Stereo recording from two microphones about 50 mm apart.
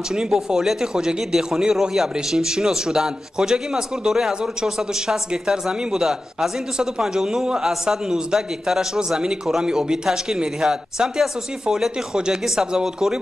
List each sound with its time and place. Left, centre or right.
0.1 s a man's voice: centre